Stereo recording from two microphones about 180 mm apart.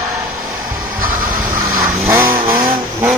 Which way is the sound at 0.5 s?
15° right (ahead or behind).